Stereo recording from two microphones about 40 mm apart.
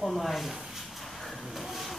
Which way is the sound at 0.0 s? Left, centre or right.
Centre.